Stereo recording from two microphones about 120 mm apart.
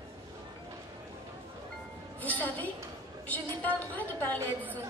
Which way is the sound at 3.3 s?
15° left (ahead or behind).